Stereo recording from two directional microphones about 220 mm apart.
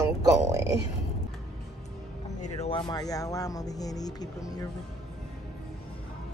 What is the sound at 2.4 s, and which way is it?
Speech, 25° left (ahead or behind).